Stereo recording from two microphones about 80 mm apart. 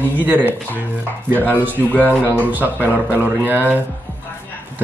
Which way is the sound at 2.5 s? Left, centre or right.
Right.